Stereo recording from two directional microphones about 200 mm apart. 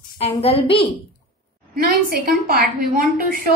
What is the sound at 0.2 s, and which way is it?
Speech, 30° left (ahead or behind).